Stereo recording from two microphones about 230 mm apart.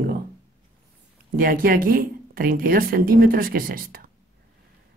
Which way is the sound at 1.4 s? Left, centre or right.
Right.